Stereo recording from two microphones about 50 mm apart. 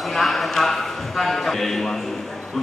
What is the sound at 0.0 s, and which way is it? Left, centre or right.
A man's voice, centre.